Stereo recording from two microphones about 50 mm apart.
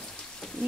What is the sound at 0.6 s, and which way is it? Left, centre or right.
Rain, centre.